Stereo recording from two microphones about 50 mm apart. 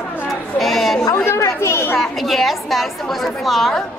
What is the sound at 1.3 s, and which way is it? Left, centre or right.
Chatter, left.